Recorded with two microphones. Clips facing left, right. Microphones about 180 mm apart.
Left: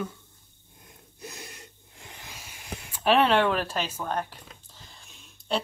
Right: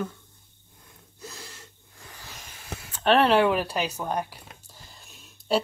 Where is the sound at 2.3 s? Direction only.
10° left (ahead or behind).